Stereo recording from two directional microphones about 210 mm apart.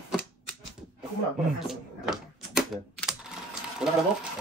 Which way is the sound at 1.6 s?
Centre (ahead or behind).